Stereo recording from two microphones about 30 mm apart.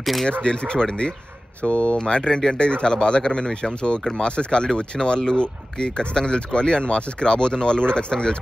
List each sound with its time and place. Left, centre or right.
0.3 s speech: left
2.0 s speech: left